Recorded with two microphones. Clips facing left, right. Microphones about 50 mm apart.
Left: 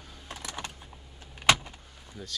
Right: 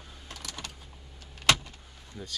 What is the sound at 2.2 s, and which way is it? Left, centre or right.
Speech, centre.